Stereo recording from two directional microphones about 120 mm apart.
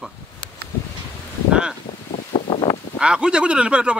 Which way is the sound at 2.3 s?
35° left (ahead or behind).